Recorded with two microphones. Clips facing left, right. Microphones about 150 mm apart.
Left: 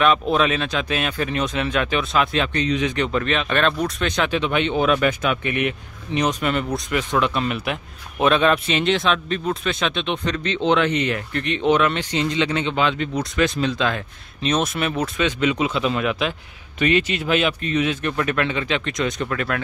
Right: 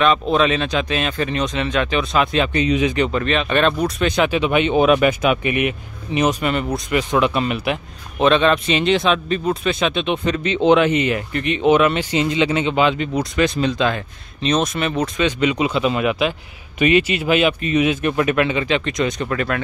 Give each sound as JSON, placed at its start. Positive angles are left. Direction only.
{"t": 0.0, "sound": "speech", "side_deg": 5}